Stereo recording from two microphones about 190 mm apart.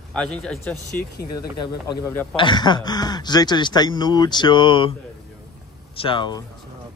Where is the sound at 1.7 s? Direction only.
20° left (ahead or behind).